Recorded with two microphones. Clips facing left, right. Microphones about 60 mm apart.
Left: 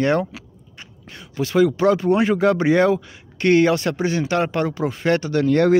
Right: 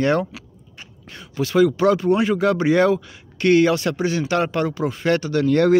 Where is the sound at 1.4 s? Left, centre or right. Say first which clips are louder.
Even; centre.